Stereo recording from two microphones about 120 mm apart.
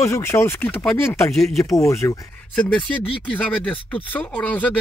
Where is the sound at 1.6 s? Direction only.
25° left (ahead or behind).